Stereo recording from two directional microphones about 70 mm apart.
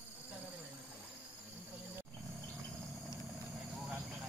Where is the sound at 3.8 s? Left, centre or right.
Centre.